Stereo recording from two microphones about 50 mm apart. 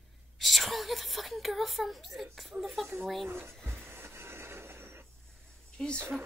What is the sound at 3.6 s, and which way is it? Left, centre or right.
Wheeze, right.